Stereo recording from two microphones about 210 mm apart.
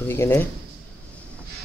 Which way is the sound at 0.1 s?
10° left (ahead or behind).